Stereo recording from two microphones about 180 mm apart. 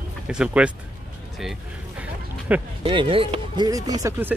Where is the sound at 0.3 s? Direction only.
5° right (ahead or behind).